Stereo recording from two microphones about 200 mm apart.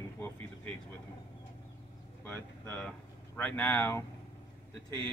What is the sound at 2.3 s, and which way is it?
A man's voice, 10° left (ahead or behind).